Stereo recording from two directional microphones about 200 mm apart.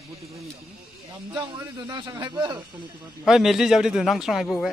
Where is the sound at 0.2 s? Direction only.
Centre (ahead or behind).